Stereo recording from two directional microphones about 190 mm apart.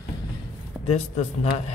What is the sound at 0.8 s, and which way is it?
Speech, 35° left (ahead or behind).